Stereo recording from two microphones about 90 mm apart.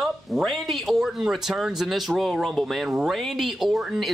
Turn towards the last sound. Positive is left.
turn(degrees=0)  # may be behind; listen again after turning